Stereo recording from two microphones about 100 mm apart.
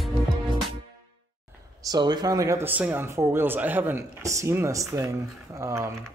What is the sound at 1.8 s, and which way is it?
Speech, 40° right (ahead or behind).